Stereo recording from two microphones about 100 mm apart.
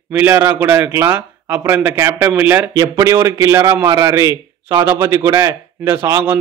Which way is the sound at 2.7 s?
35° right (ahead or behind).